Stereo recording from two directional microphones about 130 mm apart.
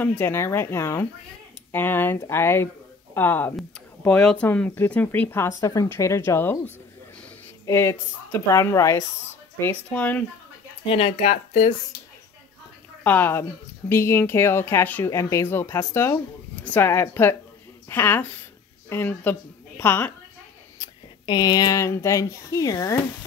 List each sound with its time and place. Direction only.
0.2 s speech: 20° left (ahead or behind)
9.6 s speech: 15° left (ahead or behind)
10.9 s speech: 50° left (ahead or behind)
13.0 s speech: 15° left (ahead or behind)
20.8 s speech: 30° left (ahead or behind)